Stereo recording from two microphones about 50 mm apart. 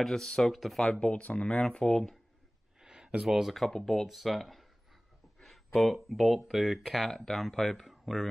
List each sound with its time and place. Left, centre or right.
0.0 s speech: centre
1.0 s speech: left
2.8 s a sound: centre
3.6 s speech: centre
5.4 s a sound: centre
6.0 s speech: centre
7.1 s speech: centre
7.7 s speech: centre